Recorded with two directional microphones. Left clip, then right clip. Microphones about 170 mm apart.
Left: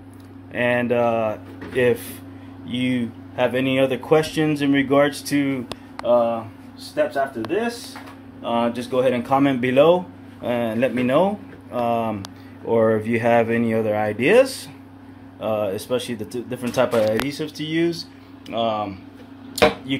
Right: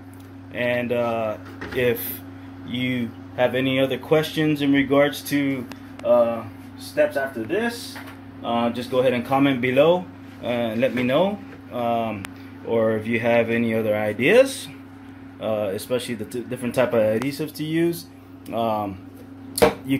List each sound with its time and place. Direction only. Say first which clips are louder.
0.6 s speech: left 3 dB; 30° left (ahead or behind)
1.9 s speech: left 3 dB; 20° left (ahead or behind)
8.4 s speech: left 1 dB; 5° right (ahead or behind)
19.9 s chopping: right 1 dB; 10° right (ahead or behind)